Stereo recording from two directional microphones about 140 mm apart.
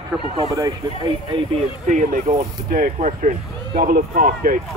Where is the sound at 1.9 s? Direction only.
65° right (ahead or behind).